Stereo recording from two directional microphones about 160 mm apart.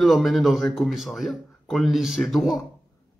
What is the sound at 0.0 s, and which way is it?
Speech, centre (ahead or behind).